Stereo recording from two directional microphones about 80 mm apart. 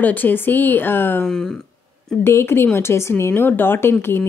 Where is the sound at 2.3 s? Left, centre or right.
Left.